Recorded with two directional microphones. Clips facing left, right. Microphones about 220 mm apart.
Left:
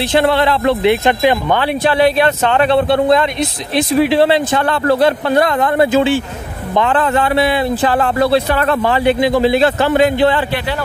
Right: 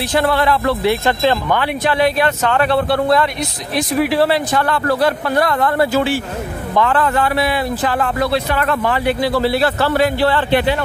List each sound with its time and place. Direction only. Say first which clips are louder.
0.0 s speech: left 3 dB; 25° left (ahead or behind)
1.5 s speech: left 3 dB; 30° left (ahead or behind)